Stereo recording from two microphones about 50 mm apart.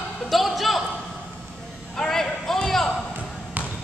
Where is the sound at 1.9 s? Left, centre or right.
Centre.